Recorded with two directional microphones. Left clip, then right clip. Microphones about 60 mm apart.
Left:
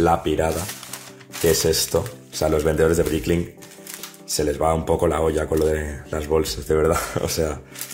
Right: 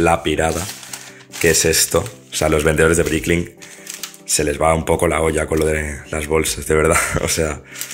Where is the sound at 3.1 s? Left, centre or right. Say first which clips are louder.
Right 4 dB; centre.